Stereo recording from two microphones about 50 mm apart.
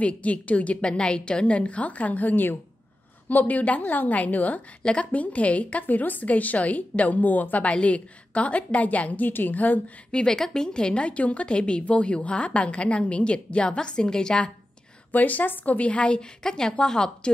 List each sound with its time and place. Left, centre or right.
0.0 s a woman's voice: left
10.1 s a woman's voice: centre
15.1 s a woman's voice: left; by 17.3 s centre